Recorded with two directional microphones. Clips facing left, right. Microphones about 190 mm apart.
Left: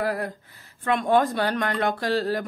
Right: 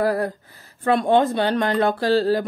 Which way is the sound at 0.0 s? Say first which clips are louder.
Right 6 dB; 35° right (ahead or behind).